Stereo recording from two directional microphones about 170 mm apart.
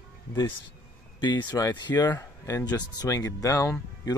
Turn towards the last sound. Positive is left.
turn(degrees=20)  # may be behind; listen again after turning